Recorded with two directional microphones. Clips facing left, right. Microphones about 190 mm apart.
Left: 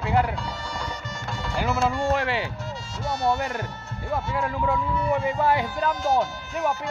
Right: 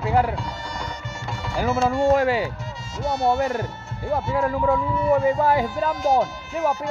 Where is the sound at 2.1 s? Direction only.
40° right (ahead or behind).